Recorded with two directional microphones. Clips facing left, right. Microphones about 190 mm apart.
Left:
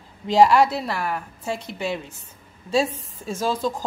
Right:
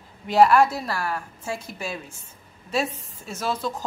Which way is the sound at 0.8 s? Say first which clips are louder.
Left 2 dB; 20° left (ahead or behind).